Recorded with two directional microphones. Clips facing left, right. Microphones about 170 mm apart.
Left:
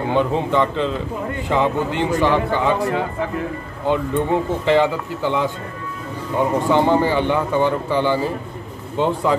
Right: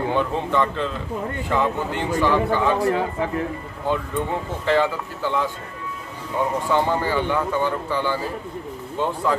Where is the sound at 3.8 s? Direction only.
20° left (ahead or behind).